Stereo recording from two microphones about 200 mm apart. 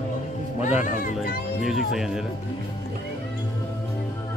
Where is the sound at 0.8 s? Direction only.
40° left (ahead or behind).